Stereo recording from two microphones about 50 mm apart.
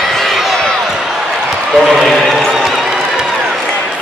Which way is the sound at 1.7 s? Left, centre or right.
Centre.